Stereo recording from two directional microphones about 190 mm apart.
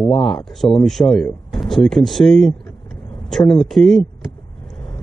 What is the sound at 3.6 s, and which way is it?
Speech, centre (ahead or behind).